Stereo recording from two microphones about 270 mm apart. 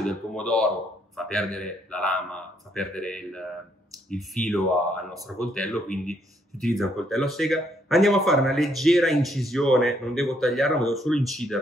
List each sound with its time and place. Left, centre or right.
0.0 s speech: centre